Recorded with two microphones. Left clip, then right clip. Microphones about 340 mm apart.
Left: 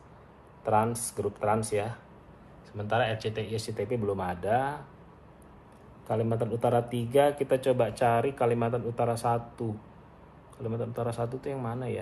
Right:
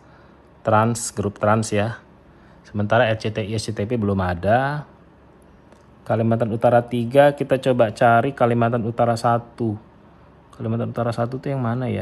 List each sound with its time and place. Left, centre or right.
0.7 s speech: right
6.0 s speech: right